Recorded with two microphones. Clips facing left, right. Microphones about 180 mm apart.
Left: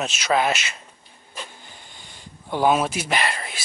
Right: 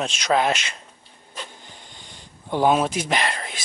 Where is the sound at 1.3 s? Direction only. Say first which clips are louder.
Even; 10° left (ahead or behind).